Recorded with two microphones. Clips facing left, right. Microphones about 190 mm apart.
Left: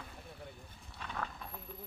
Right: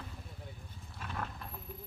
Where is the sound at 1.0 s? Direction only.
5° right (ahead or behind).